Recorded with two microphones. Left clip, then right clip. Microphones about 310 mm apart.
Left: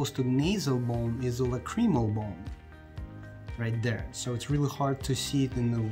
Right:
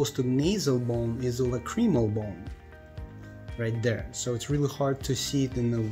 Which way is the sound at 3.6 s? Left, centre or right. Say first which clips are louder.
Right 5 dB; centre.